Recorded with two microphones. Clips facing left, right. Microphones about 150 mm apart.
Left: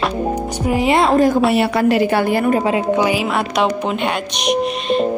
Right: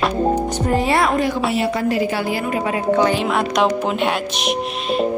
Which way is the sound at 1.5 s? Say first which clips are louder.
Left 4 dB; 70° left (ahead or behind).